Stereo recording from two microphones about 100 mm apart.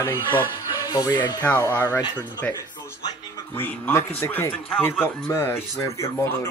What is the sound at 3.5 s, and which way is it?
Speech, 20° left (ahead or behind).